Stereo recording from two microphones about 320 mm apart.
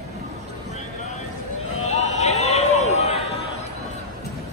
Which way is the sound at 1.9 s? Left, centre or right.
Left.